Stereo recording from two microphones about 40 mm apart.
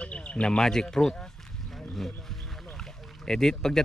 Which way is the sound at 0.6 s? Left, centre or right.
Centre.